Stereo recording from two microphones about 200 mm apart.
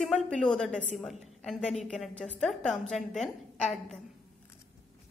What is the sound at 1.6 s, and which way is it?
Speech, 35° left (ahead or behind).